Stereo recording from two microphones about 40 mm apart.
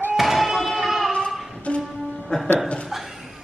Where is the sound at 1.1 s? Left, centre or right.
Left.